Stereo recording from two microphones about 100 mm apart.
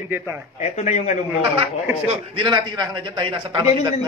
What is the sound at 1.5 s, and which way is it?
Speech, 70° right (ahead or behind).